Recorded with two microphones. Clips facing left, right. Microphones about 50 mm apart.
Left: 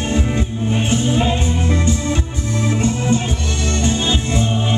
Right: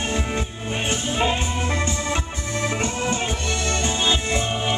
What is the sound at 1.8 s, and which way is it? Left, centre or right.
Music, right.